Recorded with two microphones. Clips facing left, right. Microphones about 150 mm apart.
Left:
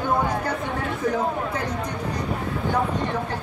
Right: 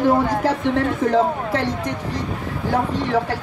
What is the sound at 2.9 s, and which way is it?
Speech, 90° right.